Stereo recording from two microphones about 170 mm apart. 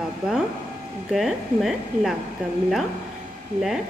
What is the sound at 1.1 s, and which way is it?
A woman's voice, centre (ahead or behind).